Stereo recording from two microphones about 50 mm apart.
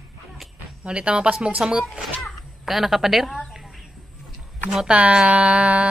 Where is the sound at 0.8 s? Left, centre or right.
Right.